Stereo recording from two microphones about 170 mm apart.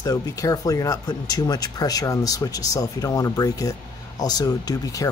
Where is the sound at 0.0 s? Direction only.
20° left (ahead or behind).